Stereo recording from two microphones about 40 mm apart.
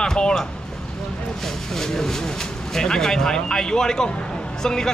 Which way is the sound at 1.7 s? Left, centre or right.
Centre.